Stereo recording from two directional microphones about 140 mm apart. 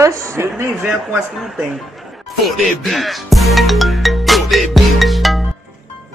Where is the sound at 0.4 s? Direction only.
20° right (ahead or behind).